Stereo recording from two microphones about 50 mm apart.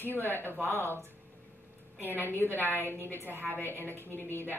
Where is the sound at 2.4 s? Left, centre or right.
Left.